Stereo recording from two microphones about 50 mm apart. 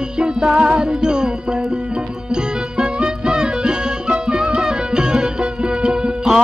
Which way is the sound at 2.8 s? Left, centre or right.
Centre.